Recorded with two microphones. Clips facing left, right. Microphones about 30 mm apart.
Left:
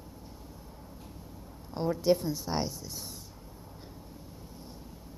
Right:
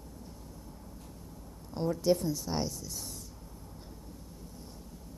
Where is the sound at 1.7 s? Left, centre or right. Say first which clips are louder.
Left 2 dB; centre.